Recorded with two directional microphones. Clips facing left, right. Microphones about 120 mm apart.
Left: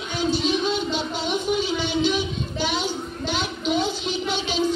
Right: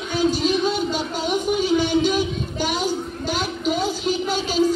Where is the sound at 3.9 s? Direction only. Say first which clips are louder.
Right 3 dB; 40° right (ahead or behind).